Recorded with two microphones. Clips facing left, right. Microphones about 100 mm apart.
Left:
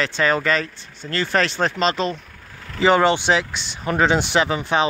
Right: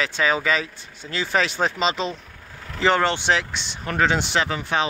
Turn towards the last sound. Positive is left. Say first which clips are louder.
# left 4 dB
turn(degrees=20)  # may be behind; listen again after turning